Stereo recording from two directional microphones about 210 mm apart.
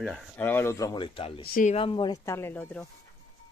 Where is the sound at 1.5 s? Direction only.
40° left (ahead or behind).